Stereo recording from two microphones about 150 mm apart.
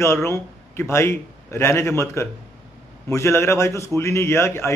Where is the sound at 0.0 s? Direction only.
20° left (ahead or behind).